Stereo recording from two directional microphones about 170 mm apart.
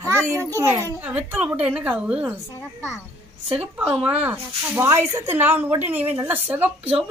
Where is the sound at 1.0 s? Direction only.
10° right (ahead or behind).